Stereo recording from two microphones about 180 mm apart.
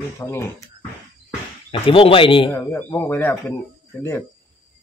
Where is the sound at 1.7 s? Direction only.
30° left (ahead or behind).